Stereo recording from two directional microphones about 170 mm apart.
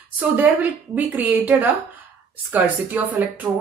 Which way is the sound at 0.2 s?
10° right (ahead or behind).